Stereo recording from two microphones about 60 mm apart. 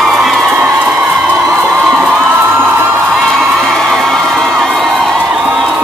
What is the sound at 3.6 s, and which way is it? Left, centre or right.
Crowd, centre.